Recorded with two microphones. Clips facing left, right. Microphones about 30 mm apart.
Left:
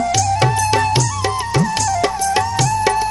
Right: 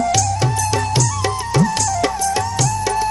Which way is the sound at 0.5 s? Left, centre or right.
Left.